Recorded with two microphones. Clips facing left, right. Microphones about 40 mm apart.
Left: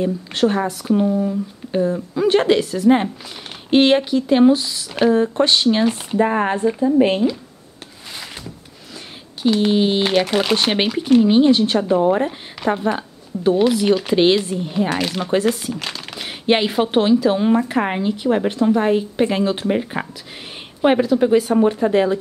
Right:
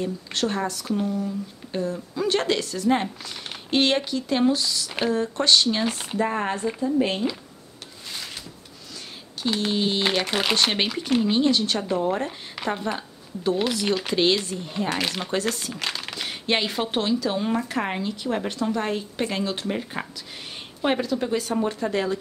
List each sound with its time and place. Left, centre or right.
0.0 s speech: centre
1.0 s speech: left
9.6 s speech: centre
10.0 s speech: centre
11.2 s speech: centre
15.0 s speech: centre
15.2 s speech: centre
15.7 s crumpling: centre
16.3 s speech: centre